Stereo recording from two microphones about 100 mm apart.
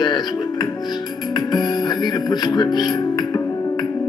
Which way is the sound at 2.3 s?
45° left (ahead or behind).